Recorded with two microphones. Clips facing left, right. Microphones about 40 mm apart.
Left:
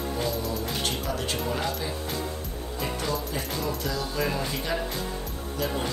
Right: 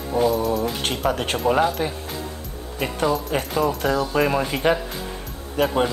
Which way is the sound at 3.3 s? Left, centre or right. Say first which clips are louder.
Right 8 dB; right.